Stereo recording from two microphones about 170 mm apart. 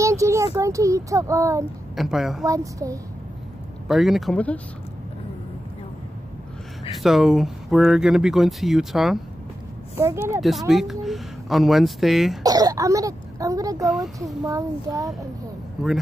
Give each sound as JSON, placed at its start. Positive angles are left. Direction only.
{"t": 0.0, "sound": "a sound", "side_deg": -20}
{"t": 0.6, "sound": "speech", "side_deg": -20}
{"t": 2.0, "sound": "speech", "side_deg": 0}
{"t": 2.4, "sound": "speech", "side_deg": -20}
{"t": 3.8, "sound": "speech", "side_deg": 0}
{"t": 7.0, "sound": "speech", "side_deg": 0}
{"t": 9.9, "sound": "a woman's voice", "side_deg": -15}
{"t": 10.7, "sound": "speech", "side_deg": 0}
{"t": 12.4, "sound": "speech", "side_deg": -20}
{"t": 13.8, "sound": "speech", "side_deg": 0}
{"t": 14.4, "sound": "speech", "side_deg": -20}